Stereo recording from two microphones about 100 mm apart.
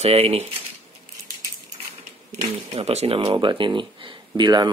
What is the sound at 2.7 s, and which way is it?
Speech, 85° right.